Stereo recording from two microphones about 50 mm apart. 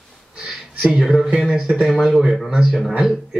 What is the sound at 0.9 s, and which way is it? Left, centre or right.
Speech, centre.